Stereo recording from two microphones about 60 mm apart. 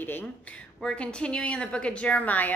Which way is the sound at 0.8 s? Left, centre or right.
Centre.